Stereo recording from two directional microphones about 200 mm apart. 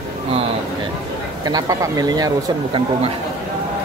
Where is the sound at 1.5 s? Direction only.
15° right (ahead or behind).